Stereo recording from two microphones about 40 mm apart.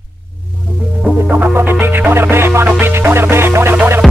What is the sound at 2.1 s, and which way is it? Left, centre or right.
Music, right.